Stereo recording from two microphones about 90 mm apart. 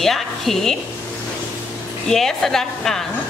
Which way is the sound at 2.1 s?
5° left (ahead or behind).